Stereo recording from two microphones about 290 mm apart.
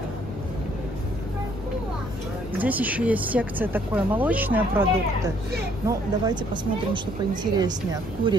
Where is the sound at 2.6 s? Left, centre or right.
Centre.